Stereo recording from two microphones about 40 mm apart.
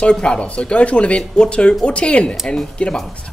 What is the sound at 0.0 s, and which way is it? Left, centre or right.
Speech, left.